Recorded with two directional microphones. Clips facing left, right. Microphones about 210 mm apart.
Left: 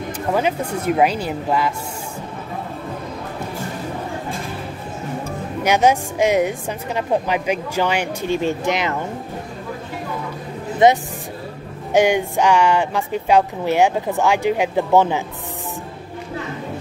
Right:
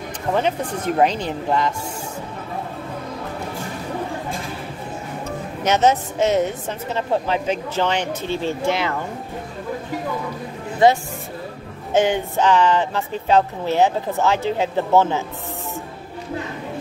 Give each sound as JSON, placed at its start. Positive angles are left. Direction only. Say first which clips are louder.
{"t": 0.3, "sound": "a woman's voice", "louder": "left 1 dB", "side_deg": 10}
{"t": 5.6, "sound": "a woman's voice", "louder": "left 1 dB", "side_deg": 10}
{"t": 10.8, "sound": "a woman's voice", "louder": "left 1 dB", "side_deg": 20}